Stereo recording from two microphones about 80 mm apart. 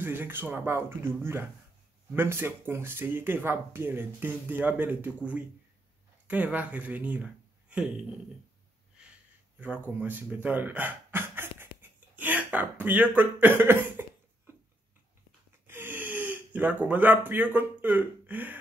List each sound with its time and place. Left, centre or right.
0.0 s speech: right
9.6 s speech: centre
12.2 s throat clearing: right
15.6 s speech: right